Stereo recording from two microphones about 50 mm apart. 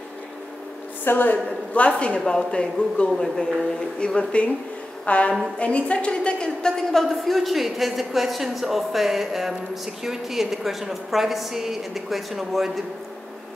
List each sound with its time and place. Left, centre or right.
1.0 s a woman's voice: left
6.9 s speech: centre